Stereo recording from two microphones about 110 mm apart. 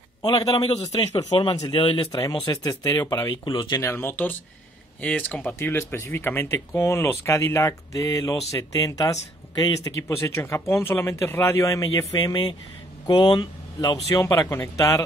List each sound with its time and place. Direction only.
0.2 s a man's voice: 35° left (ahead or behind)
1.7 s speech: 50° left (ahead or behind)
2.1 s a man's voice: 35° left (ahead or behind)